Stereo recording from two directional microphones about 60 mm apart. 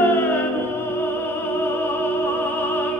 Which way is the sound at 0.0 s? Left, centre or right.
Left.